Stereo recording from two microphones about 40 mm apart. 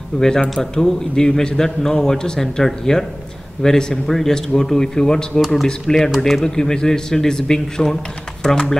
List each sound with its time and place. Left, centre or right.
0.1 s a man's voice: centre
6.1 s speech: centre
6.4 s a man's voice: centre